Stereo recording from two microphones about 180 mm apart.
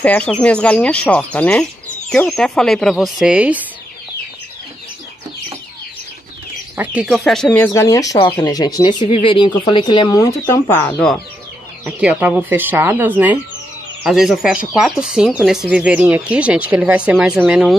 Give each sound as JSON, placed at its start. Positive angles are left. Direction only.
{"t": 0.0, "sound": "speech", "side_deg": 10}
{"t": 6.8, "sound": "speech", "side_deg": -5}
{"t": 7.4, "sound": "speech", "side_deg": 15}
{"t": 10.1, "sound": "speech", "side_deg": 15}
{"t": 11.8, "sound": "speech", "side_deg": -5}